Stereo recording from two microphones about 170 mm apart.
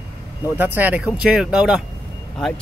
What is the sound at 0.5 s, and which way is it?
Speech, 10° right (ahead or behind).